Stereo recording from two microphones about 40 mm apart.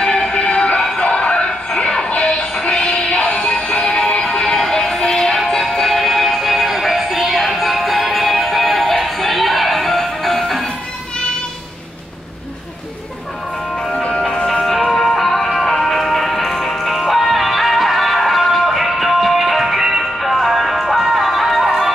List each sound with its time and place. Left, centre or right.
0.0 s music: centre
14.6 s music: centre